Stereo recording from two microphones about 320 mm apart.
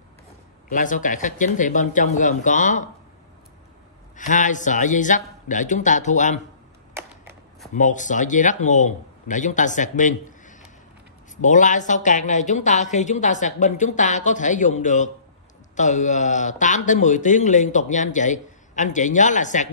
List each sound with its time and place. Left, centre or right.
0.7 s speech: left
4.2 s speech: left
6.9 s a sound: centre
7.7 s speech: left